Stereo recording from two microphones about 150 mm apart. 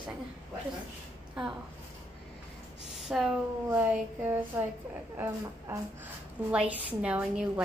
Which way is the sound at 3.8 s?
15° right (ahead or behind).